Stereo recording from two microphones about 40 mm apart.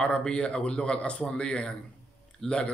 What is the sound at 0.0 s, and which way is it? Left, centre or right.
A man's voice, left.